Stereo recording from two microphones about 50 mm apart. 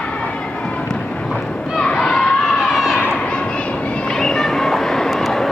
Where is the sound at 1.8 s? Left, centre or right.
Centre.